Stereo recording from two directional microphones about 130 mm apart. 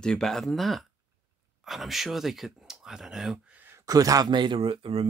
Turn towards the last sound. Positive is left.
turn(degrees=-45)  # may be behind; listen again after turning